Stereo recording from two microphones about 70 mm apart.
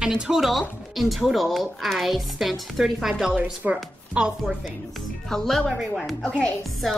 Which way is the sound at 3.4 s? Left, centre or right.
Right.